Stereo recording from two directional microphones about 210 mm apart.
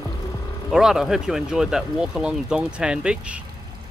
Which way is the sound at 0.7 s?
Centre (ahead or behind).